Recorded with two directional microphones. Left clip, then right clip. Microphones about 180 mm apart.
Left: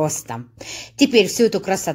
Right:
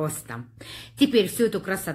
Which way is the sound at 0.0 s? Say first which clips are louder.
Left 8 dB; 35° left (ahead or behind).